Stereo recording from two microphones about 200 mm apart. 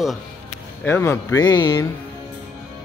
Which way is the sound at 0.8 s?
10° left (ahead or behind).